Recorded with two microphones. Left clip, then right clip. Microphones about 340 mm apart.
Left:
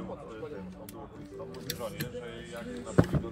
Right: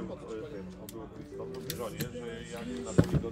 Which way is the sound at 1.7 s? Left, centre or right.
Centre.